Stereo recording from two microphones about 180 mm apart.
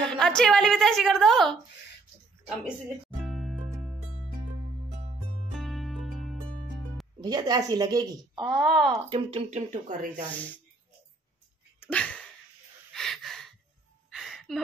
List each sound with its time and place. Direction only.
0.1 s a woman's voice: 5° left (ahead or behind)
3.3 s music: centre (ahead or behind)
5.5 s music: centre (ahead or behind)
7.2 s a woman's voice: 20° right (ahead or behind)
8.4 s a woman's voice: centre (ahead or behind)
9.1 s speech: 35° right (ahead or behind)
10.3 s speech: 10° left (ahead or behind)
11.8 s sneeze: 5° left (ahead or behind)
12.9 s a sound: centre (ahead or behind)